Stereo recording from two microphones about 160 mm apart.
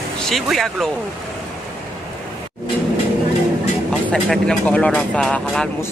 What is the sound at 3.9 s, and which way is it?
Speech, 5° left (ahead or behind).